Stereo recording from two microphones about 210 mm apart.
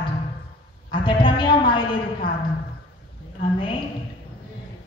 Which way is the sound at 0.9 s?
25° left (ahead or behind).